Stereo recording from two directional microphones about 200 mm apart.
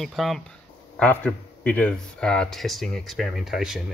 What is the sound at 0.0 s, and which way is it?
Speech, centre (ahead or behind).